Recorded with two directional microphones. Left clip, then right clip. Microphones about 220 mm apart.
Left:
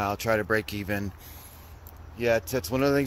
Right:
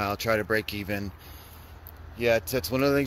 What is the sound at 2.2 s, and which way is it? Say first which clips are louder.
Speech: right 1 dB; centre (ahead or behind).